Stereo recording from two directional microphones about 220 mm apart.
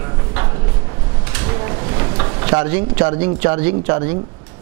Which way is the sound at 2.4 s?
15° right (ahead or behind).